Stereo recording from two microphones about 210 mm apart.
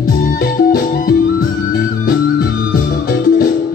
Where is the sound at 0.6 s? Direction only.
45° left (ahead or behind).